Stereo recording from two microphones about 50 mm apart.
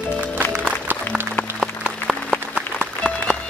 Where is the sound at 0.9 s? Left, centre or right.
Right.